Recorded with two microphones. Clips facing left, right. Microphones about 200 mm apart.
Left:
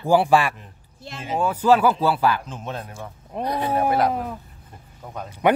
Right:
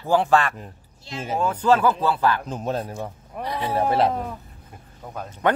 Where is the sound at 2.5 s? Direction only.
40° right (ahead or behind).